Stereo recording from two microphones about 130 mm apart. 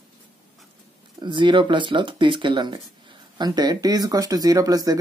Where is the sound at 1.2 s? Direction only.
35° right (ahead or behind).